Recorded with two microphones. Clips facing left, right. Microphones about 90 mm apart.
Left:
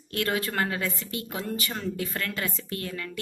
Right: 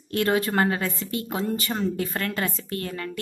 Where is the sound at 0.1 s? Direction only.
30° right (ahead or behind).